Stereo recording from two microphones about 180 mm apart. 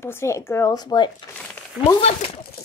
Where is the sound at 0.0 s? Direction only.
15° left (ahead or behind).